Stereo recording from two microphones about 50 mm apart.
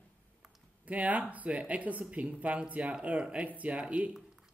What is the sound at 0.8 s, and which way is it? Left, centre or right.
Speech, right.